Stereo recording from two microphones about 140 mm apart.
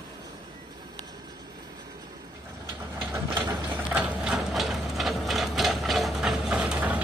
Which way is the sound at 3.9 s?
5° right (ahead or behind).